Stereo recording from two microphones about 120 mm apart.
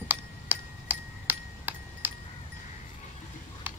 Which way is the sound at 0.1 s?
15° right (ahead or behind).